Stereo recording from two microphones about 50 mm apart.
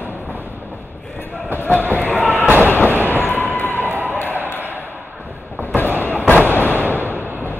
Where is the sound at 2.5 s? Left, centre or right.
Right.